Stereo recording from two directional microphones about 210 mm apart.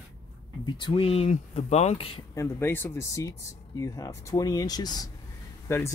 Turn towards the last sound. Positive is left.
turn(degrees=10)  # may be behind; listen again after turning